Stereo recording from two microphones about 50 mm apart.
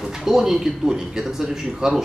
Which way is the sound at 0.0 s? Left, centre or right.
Centre.